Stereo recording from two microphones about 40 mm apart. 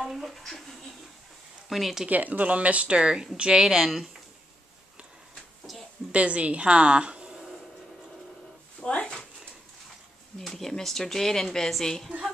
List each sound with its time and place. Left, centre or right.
0.0 s speech: centre
1.7 s speech: centre
2.0 s speech: right; by 4.0 s centre
6.1 s a woman's voice: right
10.5 s speech: centre